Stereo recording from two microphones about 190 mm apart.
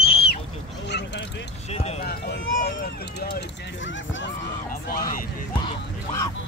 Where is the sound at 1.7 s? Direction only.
35° left (ahead or behind).